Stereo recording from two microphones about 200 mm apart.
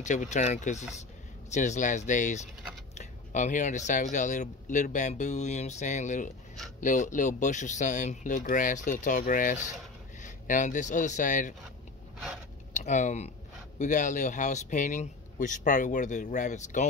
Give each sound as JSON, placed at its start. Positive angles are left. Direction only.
{"t": 0.0, "sound": "speech", "side_deg": 35}
{"t": 12.7, "sound": "speech", "side_deg": 40}